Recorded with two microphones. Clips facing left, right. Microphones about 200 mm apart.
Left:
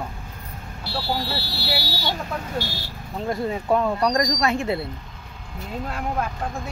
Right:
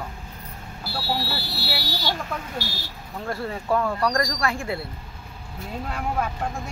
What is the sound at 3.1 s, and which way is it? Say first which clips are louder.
Speech: left 4 dB; 20° left (ahead or behind).